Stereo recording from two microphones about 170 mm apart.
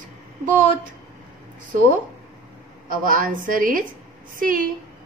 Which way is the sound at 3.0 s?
55° right (ahead or behind).